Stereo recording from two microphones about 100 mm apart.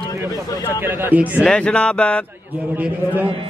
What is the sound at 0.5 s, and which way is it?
Speech, 40° left (ahead or behind).